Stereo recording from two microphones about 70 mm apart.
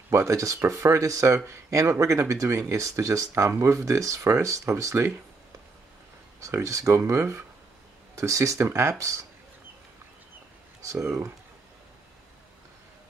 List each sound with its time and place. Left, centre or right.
0.1 s speech: right
6.4 s speech: right
11.1 s speech: right